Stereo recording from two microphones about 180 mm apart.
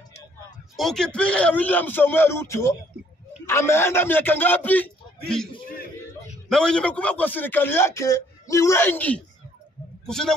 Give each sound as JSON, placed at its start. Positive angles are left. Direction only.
{"t": 0.7, "sound": "a man's voice", "side_deg": 5}
{"t": 6.5, "sound": "a man's voice", "side_deg": 5}